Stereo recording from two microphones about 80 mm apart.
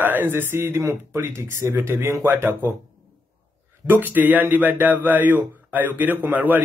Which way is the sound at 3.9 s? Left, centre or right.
Right.